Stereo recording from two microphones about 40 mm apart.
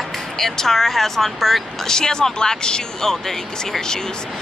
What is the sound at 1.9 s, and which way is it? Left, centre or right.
Speech, centre.